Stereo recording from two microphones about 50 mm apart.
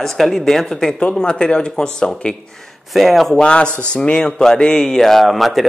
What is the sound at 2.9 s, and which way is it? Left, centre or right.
Speech, centre.